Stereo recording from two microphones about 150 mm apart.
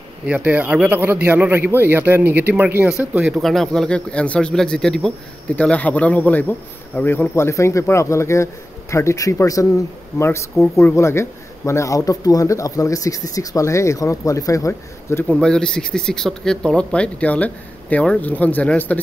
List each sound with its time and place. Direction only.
0.3 s speech: 10° right (ahead or behind)
3.4 s speech: centre (ahead or behind)
15.4 s speech: 5° left (ahead or behind)